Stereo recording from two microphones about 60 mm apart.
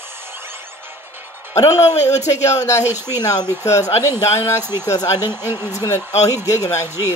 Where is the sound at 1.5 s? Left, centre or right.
Left.